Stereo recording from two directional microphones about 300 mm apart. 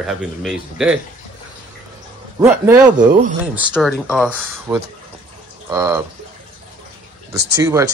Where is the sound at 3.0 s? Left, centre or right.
Right.